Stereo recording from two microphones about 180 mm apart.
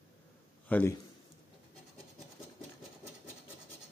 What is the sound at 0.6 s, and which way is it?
Speech, 10° left (ahead or behind).